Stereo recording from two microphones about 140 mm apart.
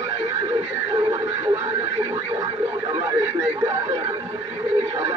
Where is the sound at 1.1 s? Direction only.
40° right (ahead or behind).